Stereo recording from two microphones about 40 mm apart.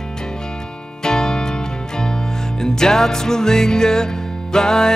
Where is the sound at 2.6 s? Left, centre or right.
Centre.